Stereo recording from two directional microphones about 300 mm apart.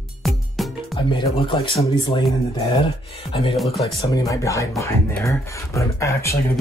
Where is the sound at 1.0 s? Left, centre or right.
Centre.